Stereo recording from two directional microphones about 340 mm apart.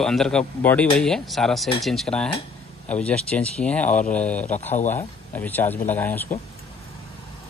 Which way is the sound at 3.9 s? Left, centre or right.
Left.